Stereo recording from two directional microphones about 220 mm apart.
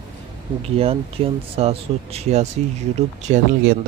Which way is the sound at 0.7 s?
25° right (ahead or behind).